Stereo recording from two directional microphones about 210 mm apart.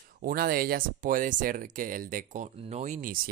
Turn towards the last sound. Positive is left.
turn(degrees=-40)  # may be behind; listen again after turning